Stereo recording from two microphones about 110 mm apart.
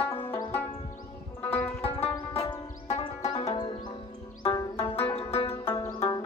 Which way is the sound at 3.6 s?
50° left (ahead or behind).